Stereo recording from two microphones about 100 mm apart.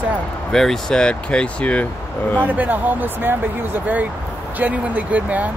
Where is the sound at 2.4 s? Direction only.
15° right (ahead or behind).